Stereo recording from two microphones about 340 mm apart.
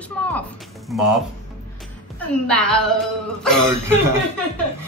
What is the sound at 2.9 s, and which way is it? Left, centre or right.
A woman's voice, centre.